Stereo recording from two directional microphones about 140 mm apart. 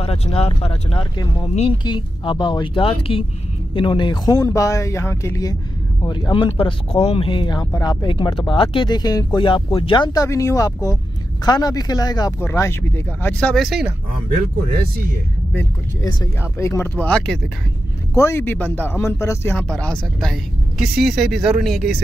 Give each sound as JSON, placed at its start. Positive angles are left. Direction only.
{"t": 0.0, "sound": "speech", "side_deg": 45}
{"t": 16.0, "sound": "speech", "side_deg": 25}
{"t": 18.1, "sound": "speech", "side_deg": 20}
{"t": 19.5, "sound": "speech", "side_deg": 5}
{"t": 20.8, "sound": "speech", "side_deg": -5}